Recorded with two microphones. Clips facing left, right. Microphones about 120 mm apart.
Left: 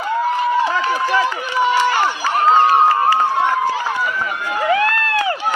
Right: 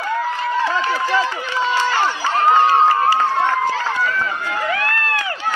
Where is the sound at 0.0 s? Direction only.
15° left (ahead or behind).